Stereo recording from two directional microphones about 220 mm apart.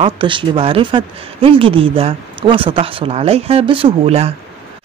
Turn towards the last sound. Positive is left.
turn(degrees=-30)  # may be behind; listen again after turning